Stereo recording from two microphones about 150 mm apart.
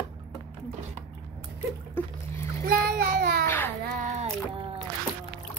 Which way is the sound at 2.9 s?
85° right.